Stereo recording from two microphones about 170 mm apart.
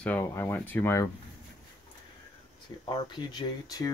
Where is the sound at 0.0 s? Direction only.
10° left (ahead or behind).